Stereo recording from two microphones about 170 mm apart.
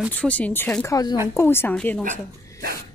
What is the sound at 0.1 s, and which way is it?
Speech, 10° left (ahead or behind).